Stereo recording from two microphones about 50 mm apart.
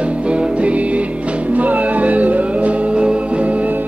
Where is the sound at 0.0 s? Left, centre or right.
Right.